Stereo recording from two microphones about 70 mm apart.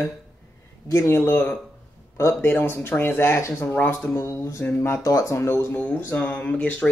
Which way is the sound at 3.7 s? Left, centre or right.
Left.